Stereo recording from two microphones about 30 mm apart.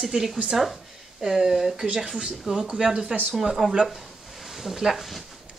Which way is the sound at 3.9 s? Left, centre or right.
Centre.